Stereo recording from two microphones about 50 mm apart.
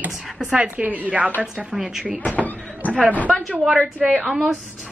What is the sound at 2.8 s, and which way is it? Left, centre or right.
Speech, left.